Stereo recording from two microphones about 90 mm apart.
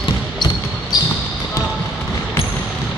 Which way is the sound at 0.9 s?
50° left (ahead or behind).